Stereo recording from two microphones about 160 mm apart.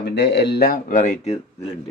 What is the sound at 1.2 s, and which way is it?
Speech, 40° left (ahead or behind).